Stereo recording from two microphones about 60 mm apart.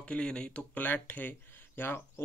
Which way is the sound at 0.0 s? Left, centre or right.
Centre.